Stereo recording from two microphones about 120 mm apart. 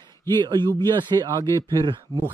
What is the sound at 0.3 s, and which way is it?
Speech, 40° right (ahead or behind).